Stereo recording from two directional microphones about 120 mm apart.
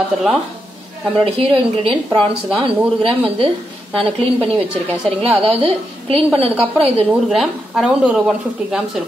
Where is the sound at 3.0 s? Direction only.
50° right (ahead or behind).